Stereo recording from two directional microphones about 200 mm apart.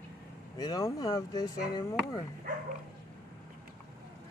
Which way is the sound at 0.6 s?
20° left (ahead or behind).